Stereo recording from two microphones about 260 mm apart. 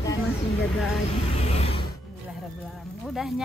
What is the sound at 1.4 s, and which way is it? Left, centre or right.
Music, left.